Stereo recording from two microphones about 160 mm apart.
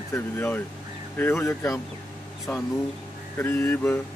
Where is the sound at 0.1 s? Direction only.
15° left (ahead or behind).